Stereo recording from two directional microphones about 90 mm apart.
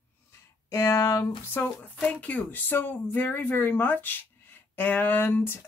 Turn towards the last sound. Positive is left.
turn(degrees=25)  # may be behind; listen again after turning